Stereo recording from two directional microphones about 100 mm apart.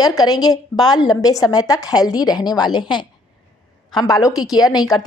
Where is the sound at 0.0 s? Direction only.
40° left (ahead or behind).